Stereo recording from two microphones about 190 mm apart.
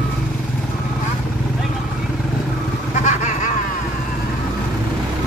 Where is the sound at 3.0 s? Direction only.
40° left (ahead or behind).